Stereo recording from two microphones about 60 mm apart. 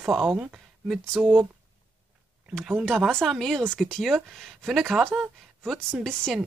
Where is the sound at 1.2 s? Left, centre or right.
Centre.